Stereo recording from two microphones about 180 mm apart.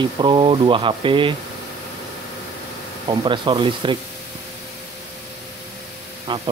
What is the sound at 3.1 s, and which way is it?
Speech, 25° right (ahead or behind).